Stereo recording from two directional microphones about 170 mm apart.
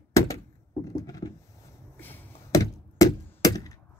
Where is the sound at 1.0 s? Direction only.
20° left (ahead or behind).